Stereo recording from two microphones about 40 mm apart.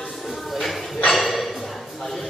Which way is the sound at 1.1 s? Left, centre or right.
Centre.